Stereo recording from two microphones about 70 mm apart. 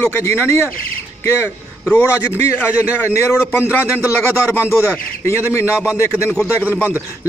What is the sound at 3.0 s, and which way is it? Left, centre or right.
A man's voice, left.